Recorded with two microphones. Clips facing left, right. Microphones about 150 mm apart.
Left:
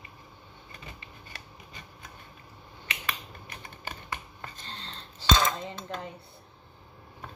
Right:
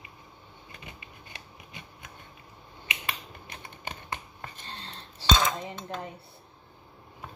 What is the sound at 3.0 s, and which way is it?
Finger snapping, 25° right (ahead or behind).